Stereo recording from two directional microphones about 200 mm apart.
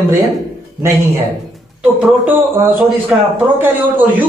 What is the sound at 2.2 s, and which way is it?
A man's voice, 10° right (ahead or behind).